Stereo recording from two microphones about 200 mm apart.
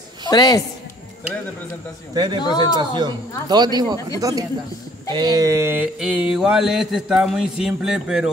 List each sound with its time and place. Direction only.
0.3 s a woman's voice: 20° left (ahead or behind)
2.1 s speech: 20° right (ahead or behind)
5.1 s mantra: 20° right (ahead or behind); by 8.3 s 5° right (ahead or behind)